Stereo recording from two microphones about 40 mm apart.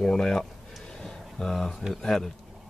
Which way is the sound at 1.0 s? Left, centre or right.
Centre.